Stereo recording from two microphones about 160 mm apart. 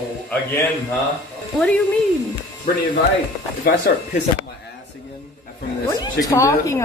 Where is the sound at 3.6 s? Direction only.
80° left.